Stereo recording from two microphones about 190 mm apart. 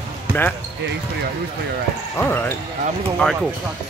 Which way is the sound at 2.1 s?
10° left (ahead or behind).